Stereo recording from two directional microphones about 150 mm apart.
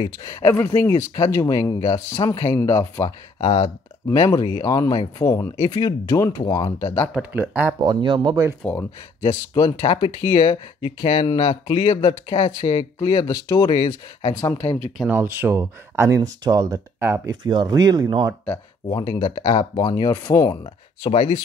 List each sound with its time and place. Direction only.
0.0 s speech: 25° left (ahead or behind)
3.3 s speech: 40° left (ahead or behind)
4.1 s speech: 20° left (ahead or behind)
7.2 s speech: 10° right (ahead or behind)
7.8 s speech: 30° right (ahead or behind)
8.7 s speech: 15° left (ahead or behind)
9.5 s speech: 25° left (ahead or behind)
14.3 s speech: 10° left (ahead or behind)
15.0 s speech: 15° right (ahead or behind)
18.4 s speech: 10° left (ahead or behind)
18.9 s speech: 35° left (ahead or behind)
21.1 s speech: 45° left (ahead or behind)